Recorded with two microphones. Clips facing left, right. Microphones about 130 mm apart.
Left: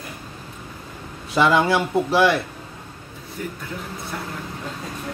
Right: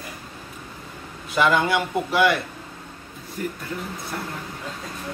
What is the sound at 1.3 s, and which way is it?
Speech, 30° left (ahead or behind).